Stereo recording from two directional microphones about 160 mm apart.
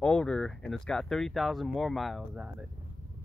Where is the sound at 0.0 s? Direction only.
5° left (ahead or behind).